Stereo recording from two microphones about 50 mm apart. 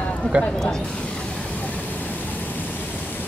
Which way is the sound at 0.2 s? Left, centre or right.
Left.